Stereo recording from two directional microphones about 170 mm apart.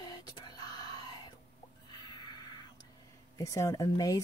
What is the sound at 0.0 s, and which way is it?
Whispering, 25° left (ahead or behind).